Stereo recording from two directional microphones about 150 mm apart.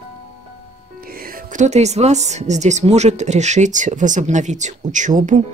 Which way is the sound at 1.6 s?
50° right (ahead or behind).